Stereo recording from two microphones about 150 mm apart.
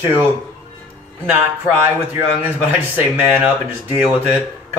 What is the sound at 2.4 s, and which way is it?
Speech, 10° right (ahead or behind).